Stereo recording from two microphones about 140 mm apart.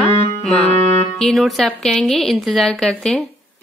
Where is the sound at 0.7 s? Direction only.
50° right (ahead or behind).